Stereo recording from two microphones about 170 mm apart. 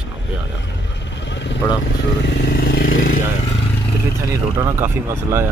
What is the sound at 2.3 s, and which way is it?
Vehicle, 80° left.